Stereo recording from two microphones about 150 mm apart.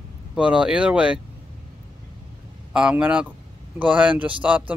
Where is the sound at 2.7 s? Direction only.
5° right (ahead or behind).